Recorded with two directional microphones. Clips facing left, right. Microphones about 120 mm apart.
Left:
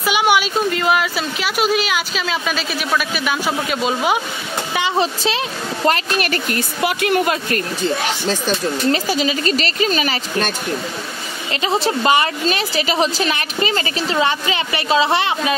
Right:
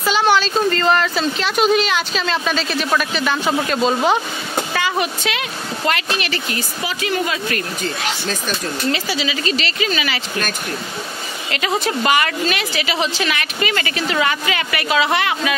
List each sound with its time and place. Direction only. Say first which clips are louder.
0.0 s a woman's voice: even; 10° left (ahead or behind)
4.7 s speech: left 4 dB; 25° left (ahead or behind)
5.9 s a woman's voice: left 3 dB; 40° left (ahead or behind); by 7.3 s 60° left (ahead or behind)
8.9 s speech: left 4 dB; 45° left (ahead or behind)
11.5 s a woman's voice: left 2 dB; 30° left (ahead or behind)